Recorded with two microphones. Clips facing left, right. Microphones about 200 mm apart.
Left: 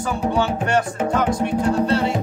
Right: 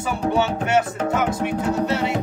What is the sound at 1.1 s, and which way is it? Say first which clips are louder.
Music: left 3 dB; 10° right (ahead or behind).